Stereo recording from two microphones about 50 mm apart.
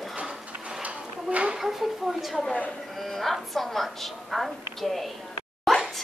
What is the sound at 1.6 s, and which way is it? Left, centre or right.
A woman's voice, centre.